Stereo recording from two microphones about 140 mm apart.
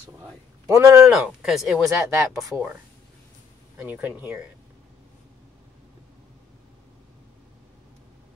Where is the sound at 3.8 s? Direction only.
15° right (ahead or behind).